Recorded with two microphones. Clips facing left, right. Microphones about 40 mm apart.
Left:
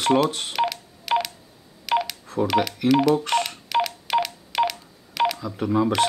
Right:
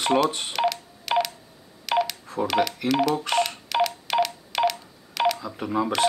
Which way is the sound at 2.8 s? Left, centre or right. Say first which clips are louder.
Left 4 dB; centre.